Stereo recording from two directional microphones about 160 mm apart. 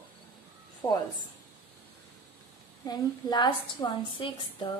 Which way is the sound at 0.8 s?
25° left (ahead or behind).